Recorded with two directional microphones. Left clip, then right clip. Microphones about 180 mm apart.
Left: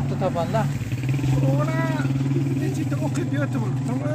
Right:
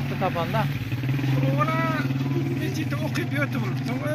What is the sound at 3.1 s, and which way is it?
Speech, 35° left (ahead or behind).